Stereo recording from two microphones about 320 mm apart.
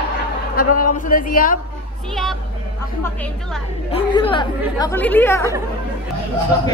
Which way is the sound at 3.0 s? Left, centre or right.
Centre.